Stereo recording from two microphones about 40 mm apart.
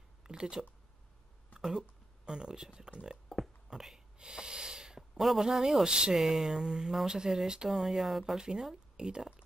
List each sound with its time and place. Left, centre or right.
0.2 s a sound: centre
2.2 s speech: right
4.2 s snort: centre
5.4 s speech: centre
5.9 s speech: right
8.4 s speech: centre